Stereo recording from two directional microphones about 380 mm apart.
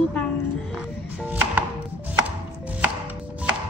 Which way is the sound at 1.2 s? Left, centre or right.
Centre.